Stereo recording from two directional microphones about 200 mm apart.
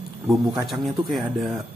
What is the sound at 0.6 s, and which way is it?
Speech, centre (ahead or behind).